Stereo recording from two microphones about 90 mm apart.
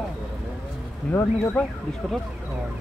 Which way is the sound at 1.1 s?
20° left (ahead or behind).